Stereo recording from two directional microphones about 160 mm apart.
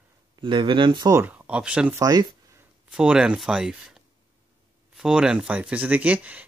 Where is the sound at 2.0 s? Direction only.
25° right (ahead or behind).